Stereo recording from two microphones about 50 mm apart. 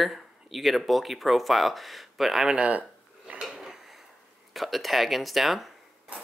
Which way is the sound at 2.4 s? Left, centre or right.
Right.